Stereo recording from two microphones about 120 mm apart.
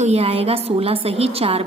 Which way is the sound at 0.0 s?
60° right (ahead or behind).